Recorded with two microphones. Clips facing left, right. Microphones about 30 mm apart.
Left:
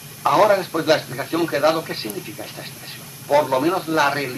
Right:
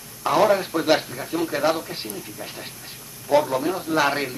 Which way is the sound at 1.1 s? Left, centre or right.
Left.